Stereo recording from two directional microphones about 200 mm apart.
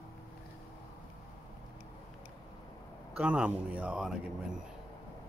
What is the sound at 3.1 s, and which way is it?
Speech, 5° right (ahead or behind).